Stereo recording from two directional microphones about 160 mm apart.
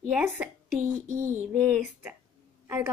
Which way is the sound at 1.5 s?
5° right (ahead or behind).